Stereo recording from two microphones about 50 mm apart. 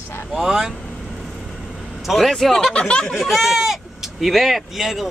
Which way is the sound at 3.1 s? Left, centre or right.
Centre.